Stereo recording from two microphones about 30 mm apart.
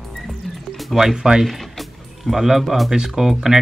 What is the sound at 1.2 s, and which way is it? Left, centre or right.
Speech, right.